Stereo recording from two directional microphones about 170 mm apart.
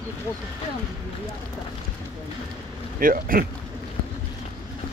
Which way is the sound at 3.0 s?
55° right (ahead or behind).